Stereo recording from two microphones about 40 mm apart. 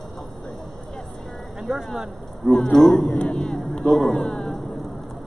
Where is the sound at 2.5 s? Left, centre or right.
Centre.